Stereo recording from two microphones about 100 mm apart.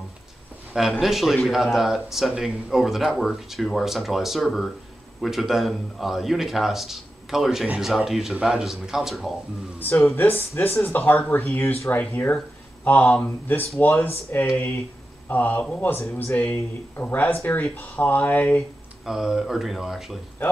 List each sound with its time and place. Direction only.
0.7 s a man's voice: centre (ahead or behind)
9.8 s speech: 20° left (ahead or behind)
19.0 s a man's voice: 5° right (ahead or behind)